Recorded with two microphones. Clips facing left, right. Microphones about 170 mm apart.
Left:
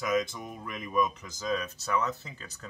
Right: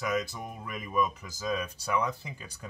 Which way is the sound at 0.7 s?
5° right (ahead or behind).